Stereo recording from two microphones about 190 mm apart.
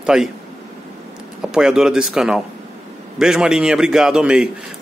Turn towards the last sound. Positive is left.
turn(degrees=-5)  # may be behind; listen again after turning